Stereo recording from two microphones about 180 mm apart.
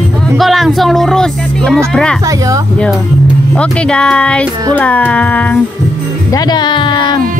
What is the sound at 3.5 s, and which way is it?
Speech, 5° left (ahead or behind).